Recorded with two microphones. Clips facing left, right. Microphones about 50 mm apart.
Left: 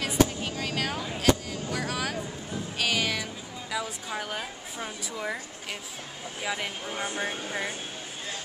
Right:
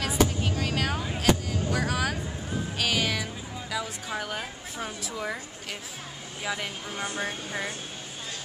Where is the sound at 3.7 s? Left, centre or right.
Centre.